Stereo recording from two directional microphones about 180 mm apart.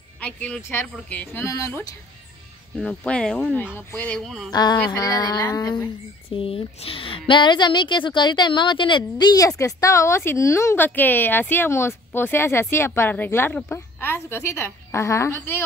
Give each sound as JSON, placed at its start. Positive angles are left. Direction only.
{"t": 0.2, "sound": "a woman's voice", "side_deg": 10}
{"t": 4.5, "sound": "speech", "side_deg": 25}
{"t": 6.3, "sound": "a woman's voice", "side_deg": 30}